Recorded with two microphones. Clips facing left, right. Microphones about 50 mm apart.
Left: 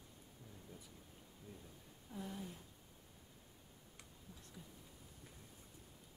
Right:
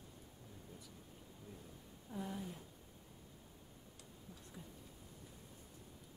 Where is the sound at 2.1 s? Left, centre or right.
Centre.